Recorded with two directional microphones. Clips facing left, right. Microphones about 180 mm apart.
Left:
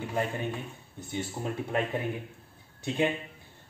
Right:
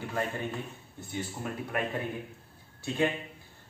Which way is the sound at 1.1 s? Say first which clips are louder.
Left 3 dB; 25° left (ahead or behind).